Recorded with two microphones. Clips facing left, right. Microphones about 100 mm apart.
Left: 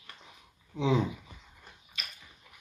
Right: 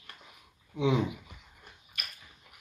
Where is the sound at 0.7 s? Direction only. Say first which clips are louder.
Even; 30° left (ahead or behind).